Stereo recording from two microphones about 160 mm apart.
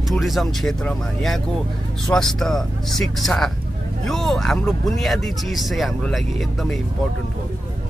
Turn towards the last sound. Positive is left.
turn(degrees=0)  # may be behind; listen again after turning